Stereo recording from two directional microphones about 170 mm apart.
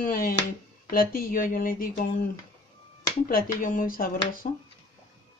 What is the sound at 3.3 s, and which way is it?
Speech, 55° left (ahead or behind).